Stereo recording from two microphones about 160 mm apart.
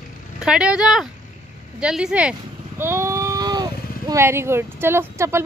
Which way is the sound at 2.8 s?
15° right (ahead or behind).